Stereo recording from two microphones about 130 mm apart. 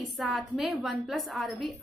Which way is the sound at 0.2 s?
Centre (ahead or behind).